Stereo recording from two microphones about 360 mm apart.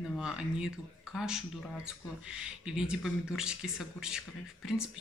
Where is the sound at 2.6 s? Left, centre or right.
Centre.